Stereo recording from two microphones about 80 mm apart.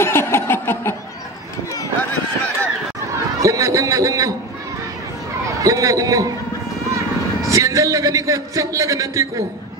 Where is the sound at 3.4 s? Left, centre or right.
Right.